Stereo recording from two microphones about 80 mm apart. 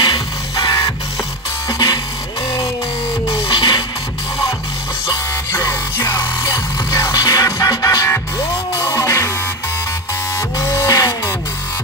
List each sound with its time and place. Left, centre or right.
0.6 s music: left
3.4 s music: left
5.5 s music: left
10.6 s music: left